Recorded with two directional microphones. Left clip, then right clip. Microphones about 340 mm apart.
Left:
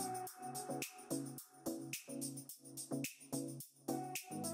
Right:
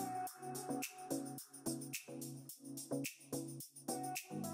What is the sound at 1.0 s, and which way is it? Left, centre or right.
Music, centre.